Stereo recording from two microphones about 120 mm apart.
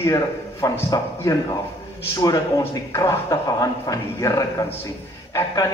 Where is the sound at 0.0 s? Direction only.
25° left (ahead or behind).